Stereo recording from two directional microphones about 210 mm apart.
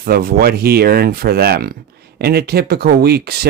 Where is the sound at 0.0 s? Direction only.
45° right (ahead or behind).